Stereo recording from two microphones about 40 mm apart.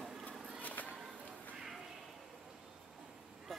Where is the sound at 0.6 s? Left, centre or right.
Left.